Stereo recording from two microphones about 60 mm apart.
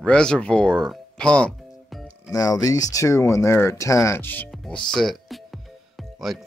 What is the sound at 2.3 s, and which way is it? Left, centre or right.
Speech, left.